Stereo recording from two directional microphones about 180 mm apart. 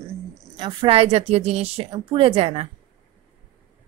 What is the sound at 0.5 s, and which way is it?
A woman's voice, 30° right (ahead or behind).